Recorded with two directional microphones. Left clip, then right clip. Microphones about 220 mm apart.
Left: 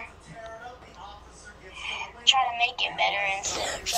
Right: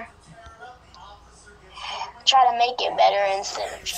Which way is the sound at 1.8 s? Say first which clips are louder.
Right 2 dB; 25° right (ahead or behind).